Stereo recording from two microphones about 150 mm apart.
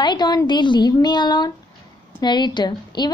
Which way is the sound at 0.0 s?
30° left (ahead or behind).